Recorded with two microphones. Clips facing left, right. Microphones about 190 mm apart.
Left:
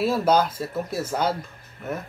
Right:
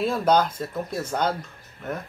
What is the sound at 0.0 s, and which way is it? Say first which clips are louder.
Speech: left 1 dB; 5° left (ahead or behind).